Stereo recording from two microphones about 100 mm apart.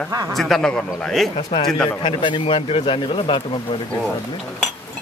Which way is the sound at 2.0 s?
60° left (ahead or behind).